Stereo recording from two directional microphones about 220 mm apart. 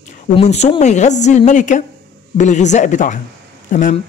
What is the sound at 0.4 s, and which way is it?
Speech, 30° left (ahead or behind).